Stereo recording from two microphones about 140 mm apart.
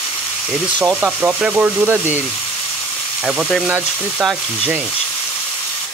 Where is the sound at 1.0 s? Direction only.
15° right (ahead or behind).